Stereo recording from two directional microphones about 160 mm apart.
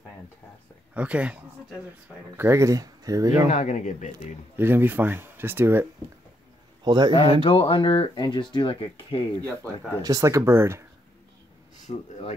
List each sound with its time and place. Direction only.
0.9 s speech: 10° right (ahead or behind)
3.4 s speech: 50° left (ahead or behind)
4.6 s speech: 10° right (ahead or behind)
6.8 s a man's voice: 30° right (ahead or behind)
7.4 s speech: 30° left (ahead or behind)
10.0 s speech: 20° right (ahead or behind)
11.9 s speech: 45° left (ahead or behind)